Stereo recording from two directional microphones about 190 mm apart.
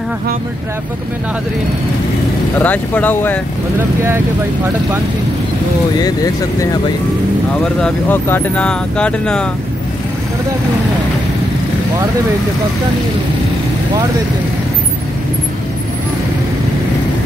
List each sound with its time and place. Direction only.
2.6 s speech: 10° left (ahead or behind)
5.9 s speech: 20° left (ahead or behind)
7.6 s speech: 5° left (ahead or behind)